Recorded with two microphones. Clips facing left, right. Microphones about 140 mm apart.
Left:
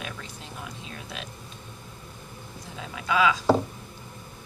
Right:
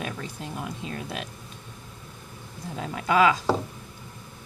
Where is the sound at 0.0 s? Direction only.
55° right (ahead or behind).